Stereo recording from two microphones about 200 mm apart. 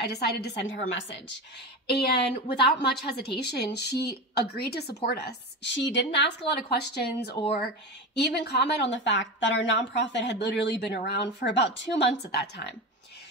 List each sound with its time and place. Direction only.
0.0 s a woman's voice: 55° left (ahead or behind)
1.9 s a woman's voice: 55° left (ahead or behind)